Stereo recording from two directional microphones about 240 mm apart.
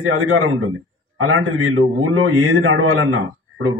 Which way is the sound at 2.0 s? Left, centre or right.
Right.